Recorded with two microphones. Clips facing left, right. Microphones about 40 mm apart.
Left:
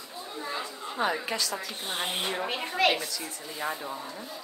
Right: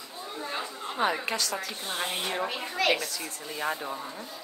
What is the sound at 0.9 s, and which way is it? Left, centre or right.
Speech, right.